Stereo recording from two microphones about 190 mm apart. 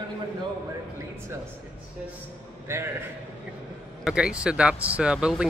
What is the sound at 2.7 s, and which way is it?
Speech, 15° right (ahead or behind).